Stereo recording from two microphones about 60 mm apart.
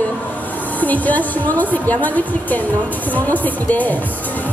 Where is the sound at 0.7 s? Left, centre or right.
Left.